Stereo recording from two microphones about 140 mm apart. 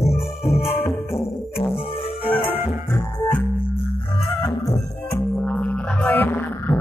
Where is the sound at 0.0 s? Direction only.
50° left (ahead or behind).